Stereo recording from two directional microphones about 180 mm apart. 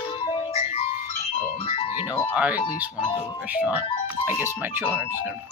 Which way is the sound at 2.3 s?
10° right (ahead or behind).